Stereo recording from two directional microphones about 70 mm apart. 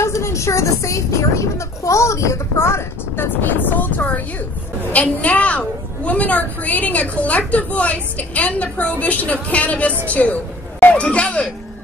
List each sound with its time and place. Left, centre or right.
0.0 s a woman's voice: left; by 11.4 s centre